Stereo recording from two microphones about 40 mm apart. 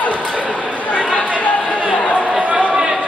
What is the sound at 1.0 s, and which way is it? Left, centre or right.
Chatter, right.